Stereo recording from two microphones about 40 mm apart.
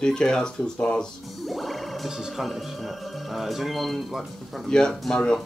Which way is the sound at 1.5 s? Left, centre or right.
Centre.